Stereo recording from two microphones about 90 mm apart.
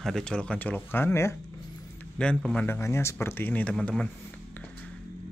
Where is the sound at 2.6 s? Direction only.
30° left (ahead or behind); by 4.0 s 10° left (ahead or behind).